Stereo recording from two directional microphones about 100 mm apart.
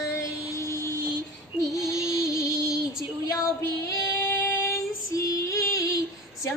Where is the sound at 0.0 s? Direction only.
30° left (ahead or behind).